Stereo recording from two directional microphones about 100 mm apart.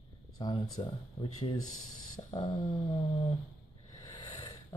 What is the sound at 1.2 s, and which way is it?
Speech, 90° left.